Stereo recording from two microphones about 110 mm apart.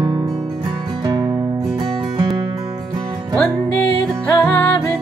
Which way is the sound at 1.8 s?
45° right (ahead or behind).